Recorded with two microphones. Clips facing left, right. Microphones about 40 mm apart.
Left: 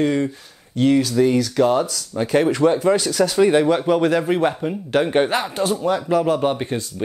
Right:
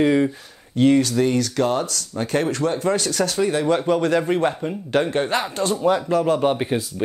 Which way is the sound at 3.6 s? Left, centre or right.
Centre.